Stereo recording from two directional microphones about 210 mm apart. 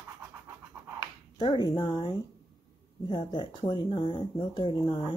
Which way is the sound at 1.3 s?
20° left (ahead or behind).